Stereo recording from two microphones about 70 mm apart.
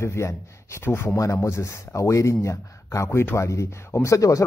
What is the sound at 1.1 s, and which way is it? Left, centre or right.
A man's voice, left.